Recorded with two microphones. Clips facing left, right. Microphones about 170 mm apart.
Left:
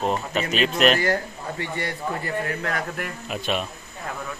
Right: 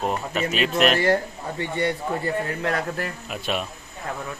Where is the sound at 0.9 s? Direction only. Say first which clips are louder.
Right 3 dB; 25° right (ahead or behind).